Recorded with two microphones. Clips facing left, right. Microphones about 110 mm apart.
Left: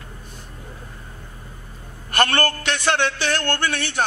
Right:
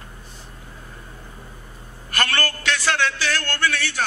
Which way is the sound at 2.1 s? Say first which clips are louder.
Left 5 dB; 25° left (ahead or behind).